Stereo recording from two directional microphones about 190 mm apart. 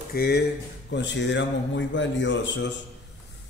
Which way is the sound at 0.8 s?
65° left (ahead or behind).